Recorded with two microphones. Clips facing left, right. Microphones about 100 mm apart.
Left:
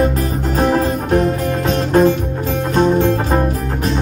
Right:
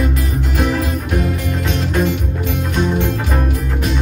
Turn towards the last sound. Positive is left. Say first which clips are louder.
# left 5 dB
turn(degrees=35)  # may be behind; listen again after turning